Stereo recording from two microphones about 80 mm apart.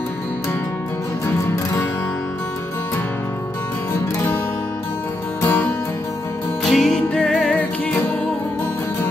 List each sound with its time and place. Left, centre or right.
5.4 s music: left
6.6 s music: centre